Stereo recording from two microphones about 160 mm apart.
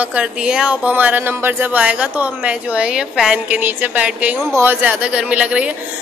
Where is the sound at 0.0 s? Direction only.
5° right (ahead or behind).